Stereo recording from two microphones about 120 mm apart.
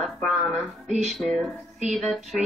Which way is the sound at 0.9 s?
70° right (ahead or behind).